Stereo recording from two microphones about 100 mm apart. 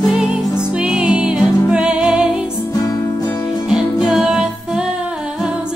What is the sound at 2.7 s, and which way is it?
Music, 35° left (ahead or behind).